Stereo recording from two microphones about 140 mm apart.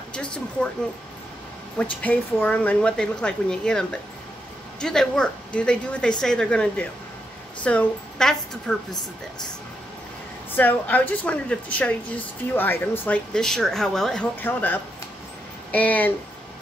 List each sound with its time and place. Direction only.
0.1 s a woman's voice: 5° left (ahead or behind)
1.8 s a woman's voice: 10° left (ahead or behind)
10.5 s a woman's voice: 15° left (ahead or behind)
14.3 s a woman's voice: 15° left (ahead or behind)